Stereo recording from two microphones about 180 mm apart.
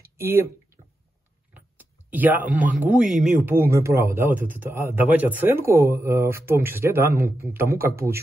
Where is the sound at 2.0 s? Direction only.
10° right (ahead or behind).